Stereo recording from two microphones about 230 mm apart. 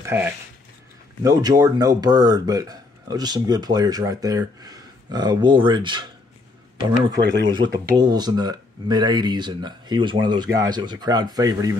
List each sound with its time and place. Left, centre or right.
0.0 s sheep: centre
1.2 s speech: centre
7.4 s speech: centre